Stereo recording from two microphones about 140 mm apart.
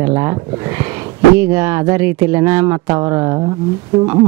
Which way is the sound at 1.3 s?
15° right (ahead or behind).